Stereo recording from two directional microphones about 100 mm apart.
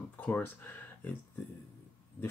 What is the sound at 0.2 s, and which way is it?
Speech, 20° left (ahead or behind).